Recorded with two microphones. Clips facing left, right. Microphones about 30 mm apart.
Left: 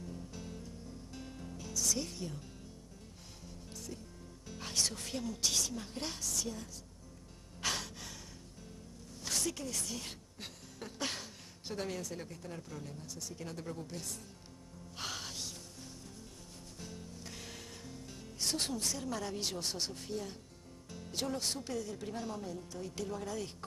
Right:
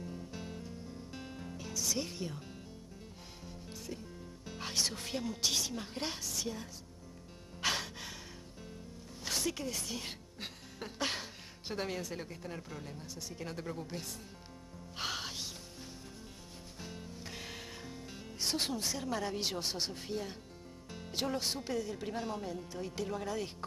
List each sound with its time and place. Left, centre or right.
0.0 s music: right
3.4 s music: right
4.5 s speech: right
7.6 s music: right
9.2 s speech: centre
15.0 s music: right
16.8 s music: right
18.4 s speech: centre